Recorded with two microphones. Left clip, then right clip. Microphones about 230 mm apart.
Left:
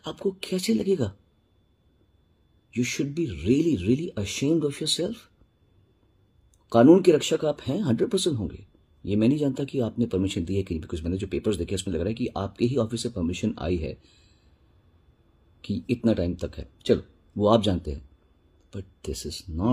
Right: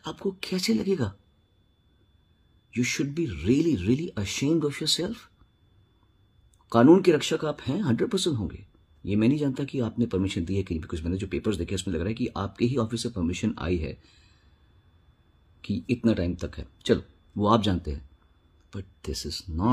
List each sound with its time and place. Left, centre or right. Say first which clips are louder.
0.4 s speech: left 1 dB; centre
2.7 s speech: even; centre
6.7 s speech: left 2 dB; centre
9.9 s a man's voice: left 1 dB; right
10.2 s speech: left 2 dB; centre
14.0 s a sound: even; centre
15.6 s speech: left 1 dB; centre
17.6 s a man's voice: left 2 dB; right
18.7 s speech: left 1 dB; centre